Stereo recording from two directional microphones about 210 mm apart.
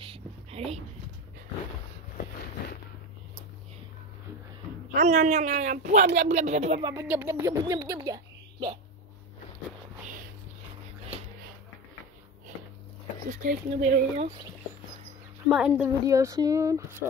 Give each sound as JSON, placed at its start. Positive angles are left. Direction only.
{"t": 0.0, "sound": "a sound", "side_deg": -25}
{"t": 4.9, "sound": "speech", "side_deg": -35}
{"t": 6.8, "sound": "speech", "side_deg": -15}
{"t": 13.3, "sound": "speech", "side_deg": -35}
{"t": 15.4, "sound": "speech", "side_deg": -5}
{"t": 16.1, "sound": "speech", "side_deg": -15}